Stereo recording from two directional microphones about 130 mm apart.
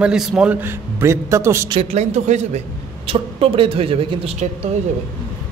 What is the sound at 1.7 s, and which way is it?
Speech, 50° right (ahead or behind).